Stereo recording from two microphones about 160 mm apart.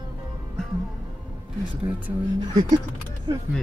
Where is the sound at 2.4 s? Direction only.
25° right (ahead or behind).